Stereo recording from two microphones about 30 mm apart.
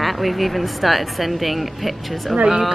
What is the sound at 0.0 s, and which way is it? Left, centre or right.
A woman's voice, centre.